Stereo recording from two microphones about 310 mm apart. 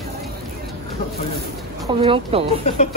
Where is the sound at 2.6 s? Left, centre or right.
Left.